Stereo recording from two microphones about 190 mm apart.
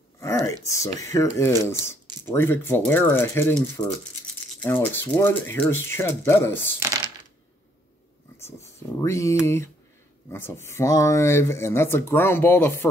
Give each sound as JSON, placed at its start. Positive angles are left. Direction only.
{"t": 0.2, "sound": "a sound", "side_deg": 15}
{"t": 0.7, "sound": "speech", "side_deg": 15}
{"t": 8.5, "sound": "speech", "side_deg": 15}